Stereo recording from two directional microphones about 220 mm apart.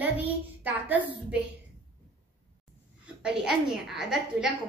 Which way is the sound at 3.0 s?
5° right (ahead or behind).